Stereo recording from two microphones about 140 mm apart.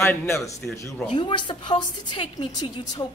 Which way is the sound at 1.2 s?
35° left (ahead or behind).